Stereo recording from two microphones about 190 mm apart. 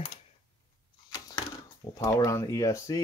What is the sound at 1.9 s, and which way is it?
Speech, 20° left (ahead or behind).